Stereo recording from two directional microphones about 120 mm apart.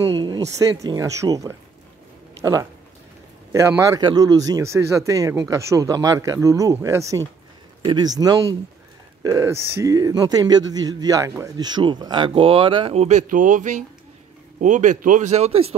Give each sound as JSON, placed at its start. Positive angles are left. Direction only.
{"t": 0.1, "sound": "speech", "side_deg": -45}
{"t": 0.4, "sound": "speech", "side_deg": -30}
{"t": 3.5, "sound": "speech", "side_deg": -25}
{"t": 7.8, "sound": "a man's voice", "side_deg": -40}
{"t": 12.9, "sound": "speech", "side_deg": -70}